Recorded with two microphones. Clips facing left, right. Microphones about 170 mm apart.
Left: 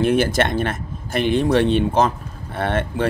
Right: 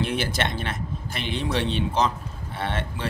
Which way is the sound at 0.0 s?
50° left (ahead or behind).